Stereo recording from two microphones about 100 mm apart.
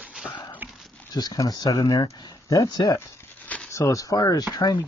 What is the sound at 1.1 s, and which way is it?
Speech, 40° left (ahead or behind).